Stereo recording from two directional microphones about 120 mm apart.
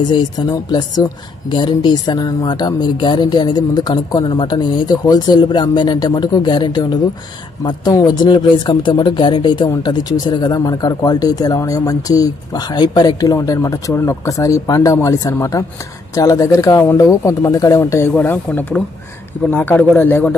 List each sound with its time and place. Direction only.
0.1 s speech: 35° left (ahead or behind); by 20.3 s 15° left (ahead or behind)